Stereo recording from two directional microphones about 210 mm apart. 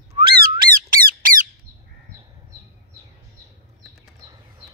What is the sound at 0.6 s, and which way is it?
Squawk, 45° right (ahead or behind).